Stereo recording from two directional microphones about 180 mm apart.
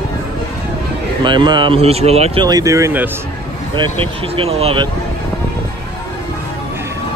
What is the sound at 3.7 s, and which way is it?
Speech, 30° right (ahead or behind).